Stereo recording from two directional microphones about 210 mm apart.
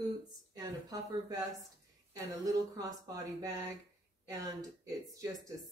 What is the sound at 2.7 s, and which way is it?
A woman's voice, 15° right (ahead or behind).